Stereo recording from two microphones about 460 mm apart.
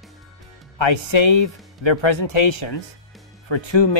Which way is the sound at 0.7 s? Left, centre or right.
Left.